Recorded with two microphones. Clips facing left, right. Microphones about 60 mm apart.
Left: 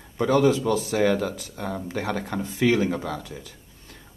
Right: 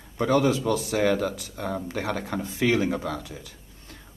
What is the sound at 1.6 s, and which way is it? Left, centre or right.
Speech, centre.